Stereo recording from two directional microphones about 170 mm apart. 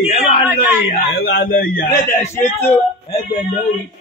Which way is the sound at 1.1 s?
70° left (ahead or behind).